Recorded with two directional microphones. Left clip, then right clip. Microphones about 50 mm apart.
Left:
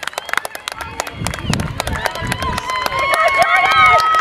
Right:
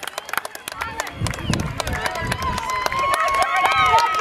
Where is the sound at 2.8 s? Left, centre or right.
Left.